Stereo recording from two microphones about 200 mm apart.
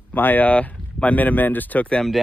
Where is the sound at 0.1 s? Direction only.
10° left (ahead or behind).